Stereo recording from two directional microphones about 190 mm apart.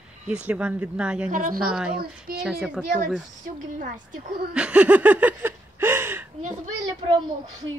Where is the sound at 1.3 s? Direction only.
45° right (ahead or behind).